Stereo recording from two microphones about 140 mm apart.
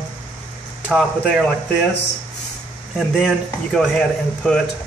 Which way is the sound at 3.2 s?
5° left (ahead or behind).